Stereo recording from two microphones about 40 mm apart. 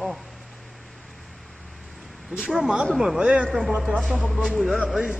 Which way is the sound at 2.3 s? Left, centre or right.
Right.